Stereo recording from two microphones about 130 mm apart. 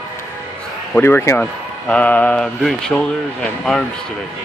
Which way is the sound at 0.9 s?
15° left (ahead or behind).